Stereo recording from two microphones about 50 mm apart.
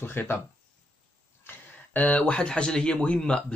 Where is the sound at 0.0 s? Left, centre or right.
Left.